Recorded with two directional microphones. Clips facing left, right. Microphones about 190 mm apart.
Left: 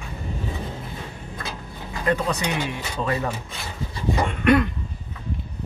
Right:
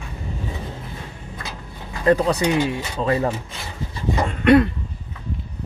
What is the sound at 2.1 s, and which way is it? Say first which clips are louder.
Speech: right 6 dB; 35° right (ahead or behind).